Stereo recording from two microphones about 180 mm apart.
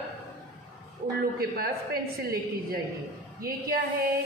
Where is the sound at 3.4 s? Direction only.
55° right (ahead or behind).